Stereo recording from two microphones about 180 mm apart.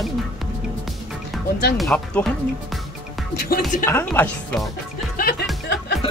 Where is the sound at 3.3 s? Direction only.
55° left (ahead or behind).